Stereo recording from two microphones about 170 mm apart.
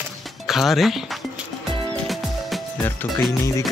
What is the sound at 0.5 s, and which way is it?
Speech, centre (ahead or behind).